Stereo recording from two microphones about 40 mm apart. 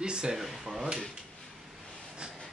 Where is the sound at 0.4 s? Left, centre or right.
Centre.